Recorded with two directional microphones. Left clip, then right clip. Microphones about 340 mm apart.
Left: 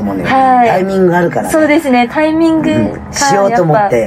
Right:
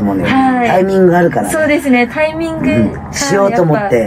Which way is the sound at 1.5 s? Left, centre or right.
Centre.